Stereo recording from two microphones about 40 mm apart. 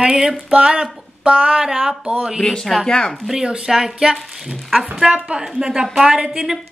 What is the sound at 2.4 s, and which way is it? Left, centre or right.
Speech, centre.